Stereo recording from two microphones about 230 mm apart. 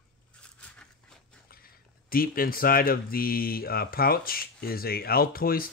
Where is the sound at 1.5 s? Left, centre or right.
Left.